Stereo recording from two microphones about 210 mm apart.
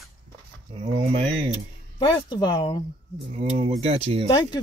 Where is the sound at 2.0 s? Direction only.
20° left (ahead or behind).